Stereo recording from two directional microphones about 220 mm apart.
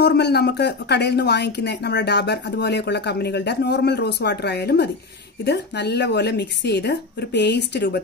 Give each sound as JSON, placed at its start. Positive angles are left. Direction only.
{"t": 0.0, "sound": "a woman's voice", "side_deg": 50}